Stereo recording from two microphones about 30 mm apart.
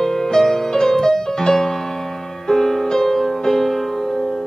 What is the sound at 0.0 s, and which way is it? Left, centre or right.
Music, centre.